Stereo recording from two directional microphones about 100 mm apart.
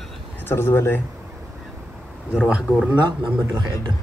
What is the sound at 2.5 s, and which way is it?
Speech, 10° right (ahead or behind).